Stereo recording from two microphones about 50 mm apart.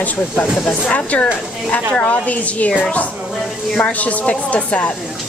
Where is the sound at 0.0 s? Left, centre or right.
Left.